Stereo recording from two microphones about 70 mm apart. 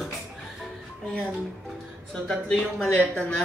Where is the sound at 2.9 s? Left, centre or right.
Left.